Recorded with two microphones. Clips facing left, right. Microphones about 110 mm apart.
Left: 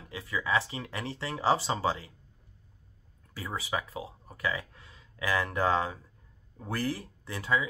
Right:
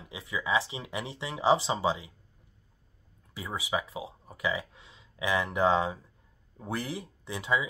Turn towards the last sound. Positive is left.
turn(degrees=-20)  # may be behind; listen again after turning